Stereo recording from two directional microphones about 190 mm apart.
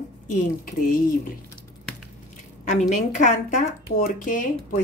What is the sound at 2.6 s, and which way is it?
Speech, 40° left (ahead or behind).